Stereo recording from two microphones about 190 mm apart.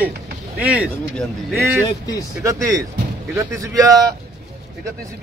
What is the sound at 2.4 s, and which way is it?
Speech, 15° right (ahead or behind).